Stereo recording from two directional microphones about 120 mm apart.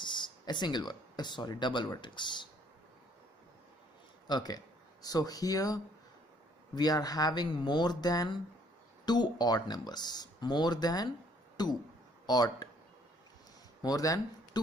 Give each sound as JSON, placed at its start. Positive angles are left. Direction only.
{"t": 0.0, "sound": "speech", "side_deg": 40}
{"t": 4.3, "sound": "speech", "side_deg": 35}
{"t": 13.8, "sound": "speech", "side_deg": 30}